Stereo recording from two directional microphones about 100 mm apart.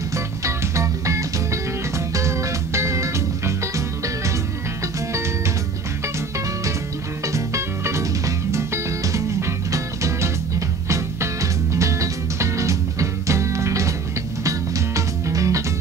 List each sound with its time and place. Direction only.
0.1 s music: 30° right (ahead or behind)
7.3 s music: 30° right (ahead or behind)
11.7 s music: 30° right (ahead or behind)
15.0 s music: 30° right (ahead or behind)